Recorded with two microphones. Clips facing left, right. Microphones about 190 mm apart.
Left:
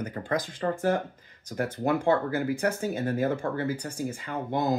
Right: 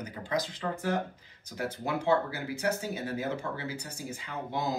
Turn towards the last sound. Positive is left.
turn(degrees=50)  # may be behind; listen again after turning